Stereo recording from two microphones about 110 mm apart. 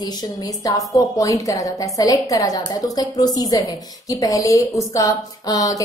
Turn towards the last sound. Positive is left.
turn(degrees=30)  # may be behind; listen again after turning